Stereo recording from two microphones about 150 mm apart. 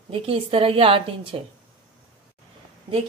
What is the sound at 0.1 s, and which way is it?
A woman's voice, 35° right (ahead or behind).